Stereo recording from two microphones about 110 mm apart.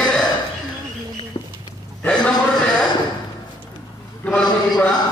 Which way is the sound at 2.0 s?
10° left (ahead or behind).